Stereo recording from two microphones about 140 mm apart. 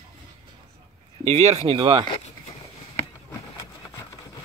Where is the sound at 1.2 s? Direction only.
50° right (ahead or behind).